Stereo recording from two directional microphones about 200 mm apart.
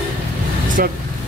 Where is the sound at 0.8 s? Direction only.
45° right (ahead or behind).